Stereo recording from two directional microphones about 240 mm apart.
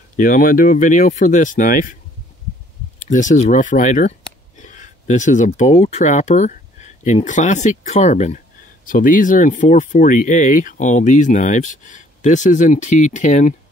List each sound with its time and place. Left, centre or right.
0.2 s speech: left
3.0 s speech: left